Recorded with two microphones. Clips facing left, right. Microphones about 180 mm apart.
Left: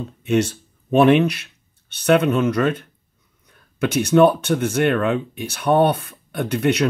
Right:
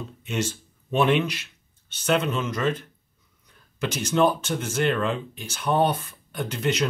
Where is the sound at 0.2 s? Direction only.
65° left (ahead or behind).